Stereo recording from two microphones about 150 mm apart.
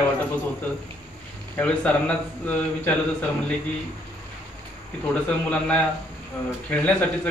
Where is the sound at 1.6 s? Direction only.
10° left (ahead or behind).